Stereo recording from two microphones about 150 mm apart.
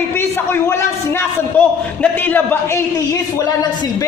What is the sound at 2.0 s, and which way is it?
Speech, 10° left (ahead or behind).